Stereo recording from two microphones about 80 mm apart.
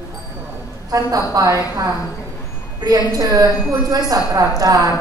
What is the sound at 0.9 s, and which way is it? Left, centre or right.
A woman's voice, right.